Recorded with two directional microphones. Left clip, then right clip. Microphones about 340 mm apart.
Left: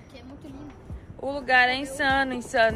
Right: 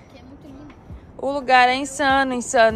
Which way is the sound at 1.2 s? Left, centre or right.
Centre.